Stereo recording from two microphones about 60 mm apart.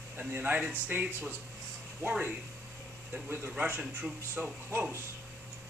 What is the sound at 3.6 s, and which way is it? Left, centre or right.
Speech, right.